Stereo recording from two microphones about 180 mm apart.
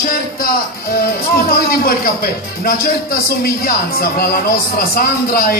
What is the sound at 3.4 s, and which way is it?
Speech, 55° left (ahead or behind).